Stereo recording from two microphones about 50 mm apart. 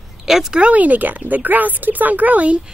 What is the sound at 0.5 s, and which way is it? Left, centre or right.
Speech, right.